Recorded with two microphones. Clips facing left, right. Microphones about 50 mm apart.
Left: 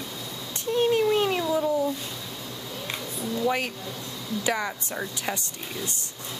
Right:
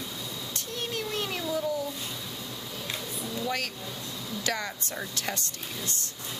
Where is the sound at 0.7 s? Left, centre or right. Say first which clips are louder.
Left 13 dB; left.